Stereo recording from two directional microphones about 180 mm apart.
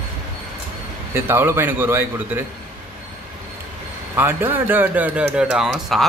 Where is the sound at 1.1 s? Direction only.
10° right (ahead or behind).